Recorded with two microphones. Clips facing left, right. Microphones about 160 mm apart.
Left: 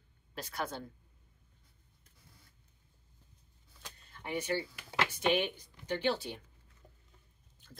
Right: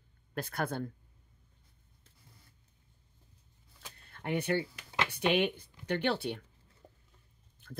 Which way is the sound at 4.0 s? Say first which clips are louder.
Right 4 dB; 55° right (ahead or behind).